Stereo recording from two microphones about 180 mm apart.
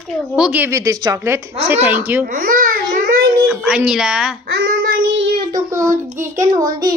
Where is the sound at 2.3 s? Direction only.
50° right (ahead or behind).